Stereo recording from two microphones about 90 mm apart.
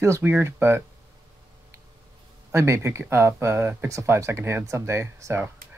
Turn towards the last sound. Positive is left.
turn(degrees=-30)  # may be behind; listen again after turning